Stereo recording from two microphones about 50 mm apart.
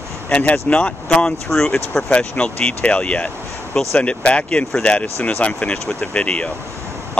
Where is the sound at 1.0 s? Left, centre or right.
Centre.